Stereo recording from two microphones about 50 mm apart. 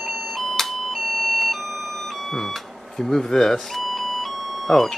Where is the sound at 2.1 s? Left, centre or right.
Centre.